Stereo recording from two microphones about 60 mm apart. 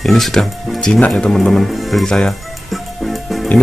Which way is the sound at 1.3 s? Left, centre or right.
Centre.